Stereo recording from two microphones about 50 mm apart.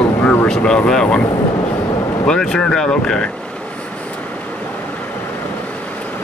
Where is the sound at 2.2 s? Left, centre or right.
Centre.